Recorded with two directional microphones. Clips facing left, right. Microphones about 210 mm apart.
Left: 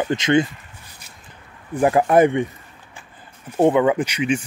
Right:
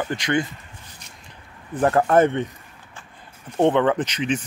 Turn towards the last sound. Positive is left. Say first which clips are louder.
# left 3 dB
turn(degrees=10)  # may be behind; listen again after turning